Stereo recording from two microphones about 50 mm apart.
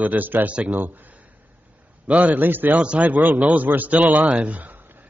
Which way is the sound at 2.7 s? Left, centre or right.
Right.